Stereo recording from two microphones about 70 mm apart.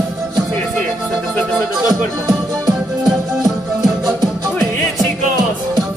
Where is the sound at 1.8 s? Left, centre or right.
Right.